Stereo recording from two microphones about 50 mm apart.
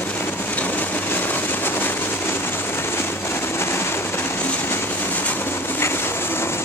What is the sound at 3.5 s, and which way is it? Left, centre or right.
Vehicle, left.